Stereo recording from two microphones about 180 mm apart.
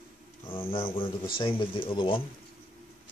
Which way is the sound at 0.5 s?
30° left (ahead or behind).